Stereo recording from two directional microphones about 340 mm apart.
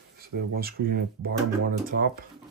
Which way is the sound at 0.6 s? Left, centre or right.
Right.